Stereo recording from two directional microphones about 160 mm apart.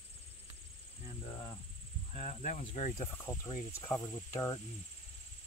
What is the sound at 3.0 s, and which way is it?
Speech, 20° left (ahead or behind).